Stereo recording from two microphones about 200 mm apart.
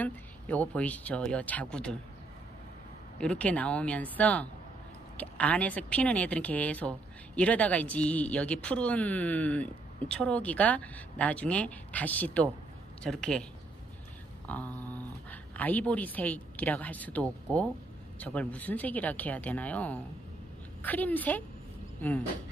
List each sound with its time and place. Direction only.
0.0 s speech: 5° left (ahead or behind)
3.2 s speech: 5° left (ahead or behind)
14.5 s speech: 10° left (ahead or behind)